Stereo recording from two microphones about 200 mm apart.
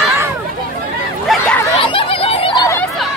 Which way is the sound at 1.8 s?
25° left (ahead or behind).